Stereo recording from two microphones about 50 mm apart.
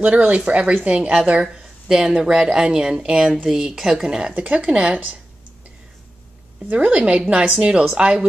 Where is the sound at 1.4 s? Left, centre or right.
Centre.